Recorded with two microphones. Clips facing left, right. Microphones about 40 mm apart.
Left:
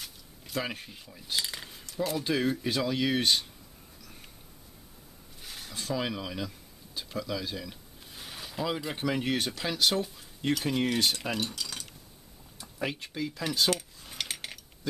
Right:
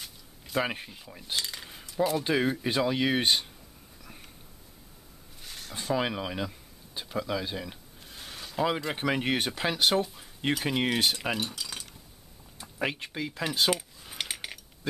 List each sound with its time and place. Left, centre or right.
0.6 s speech: right
0.8 s speech: centre
1.3 s cutlery: centre
1.7 s cutlery: centre
2.2 s speech: centre
5.4 s a sound: centre
5.7 s speech: centre
8.1 s a sound: centre
8.9 s speech: right; by 11.9 s centre
12.5 s speech: right
13.7 s cutlery: centre